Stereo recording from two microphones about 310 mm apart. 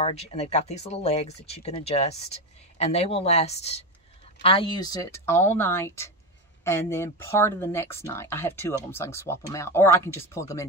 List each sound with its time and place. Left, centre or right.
0.0 s speech: centre